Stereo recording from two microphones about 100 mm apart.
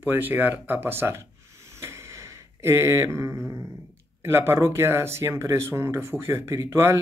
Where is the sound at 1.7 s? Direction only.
25° right (ahead or behind).